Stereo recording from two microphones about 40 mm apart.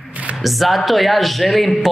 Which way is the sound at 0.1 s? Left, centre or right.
Right.